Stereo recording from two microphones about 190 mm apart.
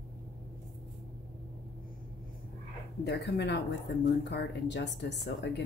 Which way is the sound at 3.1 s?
65° left (ahead or behind).